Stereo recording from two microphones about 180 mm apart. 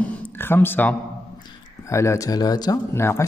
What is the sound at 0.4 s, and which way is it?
A man's voice, 10° left (ahead or behind).